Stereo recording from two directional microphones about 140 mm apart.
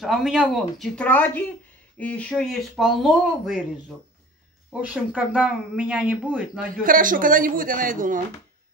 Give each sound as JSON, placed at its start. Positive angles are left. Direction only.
{"t": 0.0, "sound": "speech", "side_deg": 0}
{"t": 4.9, "sound": "speech", "side_deg": -10}
{"t": 6.8, "sound": "a man's voice", "side_deg": -80}